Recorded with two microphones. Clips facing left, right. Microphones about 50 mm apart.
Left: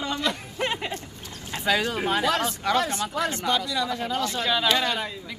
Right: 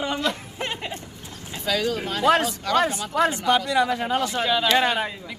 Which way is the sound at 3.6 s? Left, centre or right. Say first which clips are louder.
Right 6 dB; right.